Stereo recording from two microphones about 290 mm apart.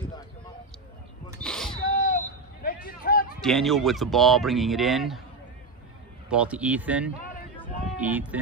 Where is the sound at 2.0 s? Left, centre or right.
Left.